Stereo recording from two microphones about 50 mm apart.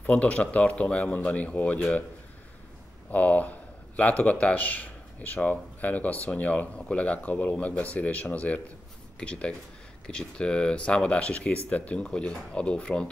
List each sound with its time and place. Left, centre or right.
0.0 s speech: left
3.1 s speech: left